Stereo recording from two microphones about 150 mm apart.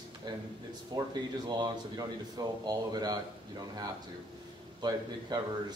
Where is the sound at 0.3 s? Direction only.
25° right (ahead or behind).